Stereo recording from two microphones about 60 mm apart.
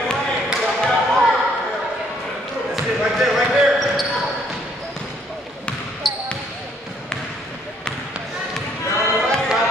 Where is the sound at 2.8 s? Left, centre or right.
Centre.